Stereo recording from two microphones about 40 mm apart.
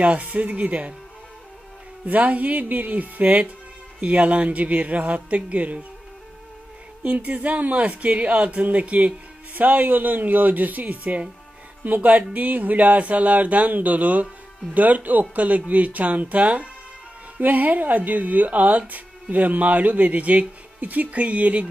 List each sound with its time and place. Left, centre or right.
0.0 s speech: right
2.0 s speech: right
7.0 s speech: right